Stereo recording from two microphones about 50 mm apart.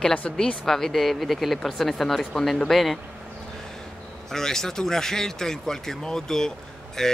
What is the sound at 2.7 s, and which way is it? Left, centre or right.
Speech, centre.